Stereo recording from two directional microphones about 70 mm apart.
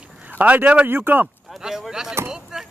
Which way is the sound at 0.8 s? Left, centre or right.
Right.